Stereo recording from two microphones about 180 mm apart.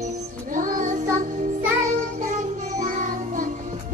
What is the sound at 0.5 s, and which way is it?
Child singing, 50° right (ahead or behind).